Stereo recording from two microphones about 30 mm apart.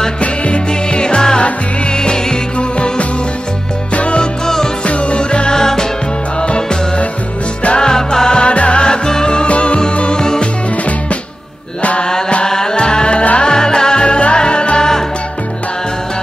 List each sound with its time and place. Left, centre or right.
0.2 s music: left
0.7 s music: left
3.9 s music: left
4.2 s music: centre
4.8 s music: left
5.5 s music: centre
6.4 s music: left
7.8 s music: left
8.5 s music: left
8.8 s music: left
9.5 s music: left
12.0 s mantra: left
12.4 s music: centre